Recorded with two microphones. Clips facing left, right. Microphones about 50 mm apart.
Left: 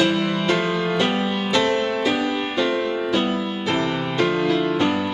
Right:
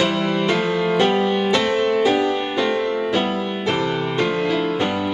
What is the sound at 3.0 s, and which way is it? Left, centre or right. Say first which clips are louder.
Music: right 1 dB; centre.